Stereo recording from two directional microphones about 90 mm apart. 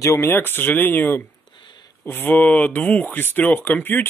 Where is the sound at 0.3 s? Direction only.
25° left (ahead or behind).